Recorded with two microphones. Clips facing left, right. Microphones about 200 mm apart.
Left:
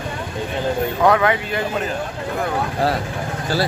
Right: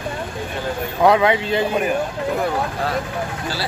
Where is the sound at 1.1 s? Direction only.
15° right (ahead or behind).